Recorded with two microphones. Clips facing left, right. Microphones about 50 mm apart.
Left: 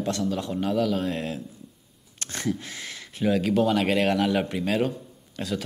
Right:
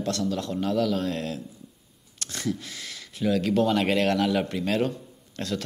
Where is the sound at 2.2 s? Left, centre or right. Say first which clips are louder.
Left 1 dB; left.